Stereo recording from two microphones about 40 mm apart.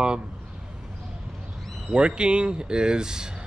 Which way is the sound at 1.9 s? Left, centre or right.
Right.